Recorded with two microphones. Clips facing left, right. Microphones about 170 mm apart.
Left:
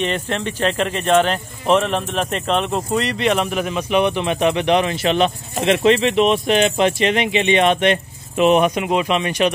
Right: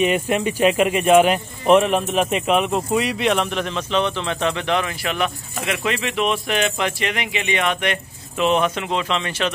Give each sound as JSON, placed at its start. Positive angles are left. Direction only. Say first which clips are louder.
{"t": 0.0, "sound": "speech", "louder": "right 3 dB", "side_deg": -10}